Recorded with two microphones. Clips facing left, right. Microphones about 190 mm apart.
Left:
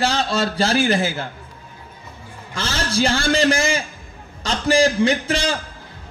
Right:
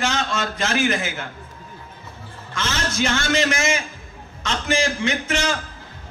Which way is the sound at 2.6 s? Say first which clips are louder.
Left 3 dB; 35° left (ahead or behind).